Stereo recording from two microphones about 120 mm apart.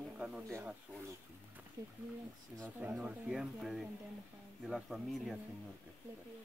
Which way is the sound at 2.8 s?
10° right (ahead or behind).